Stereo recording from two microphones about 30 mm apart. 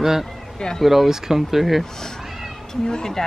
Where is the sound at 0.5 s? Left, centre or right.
Left.